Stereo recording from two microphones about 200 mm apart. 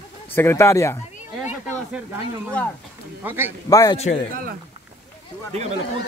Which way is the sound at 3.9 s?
30° left (ahead or behind).